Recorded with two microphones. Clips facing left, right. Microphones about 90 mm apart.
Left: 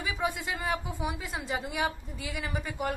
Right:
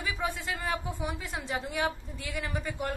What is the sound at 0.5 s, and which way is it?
A woman's voice, 5° left (ahead or behind).